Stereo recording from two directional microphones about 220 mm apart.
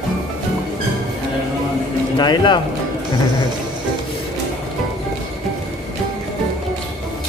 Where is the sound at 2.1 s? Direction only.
20° left (ahead or behind).